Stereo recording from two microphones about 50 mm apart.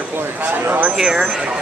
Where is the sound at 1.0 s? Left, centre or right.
Centre.